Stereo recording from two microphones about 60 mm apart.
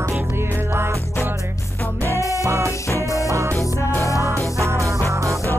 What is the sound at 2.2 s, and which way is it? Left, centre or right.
Music, left.